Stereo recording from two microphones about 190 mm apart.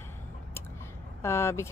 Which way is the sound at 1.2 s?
15° left (ahead or behind).